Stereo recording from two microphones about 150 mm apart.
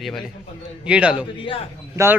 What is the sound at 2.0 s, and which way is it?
Speech, 20° right (ahead or behind).